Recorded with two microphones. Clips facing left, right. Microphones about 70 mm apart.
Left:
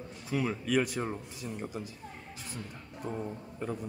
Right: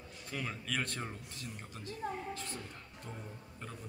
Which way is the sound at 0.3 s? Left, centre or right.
Centre.